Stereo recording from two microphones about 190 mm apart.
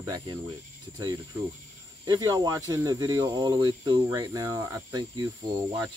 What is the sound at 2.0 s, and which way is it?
Speech, 20° right (ahead or behind).